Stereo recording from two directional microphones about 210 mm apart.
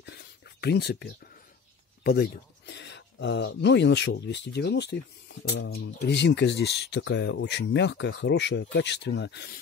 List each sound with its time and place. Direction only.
0.0 s whispering: 50° left (ahead or behind)
2.0 s speech: 50° left (ahead or behind)